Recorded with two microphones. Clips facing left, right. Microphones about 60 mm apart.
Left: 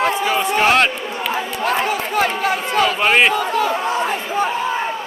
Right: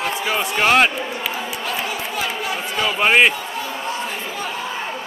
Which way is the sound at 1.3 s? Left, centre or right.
Left.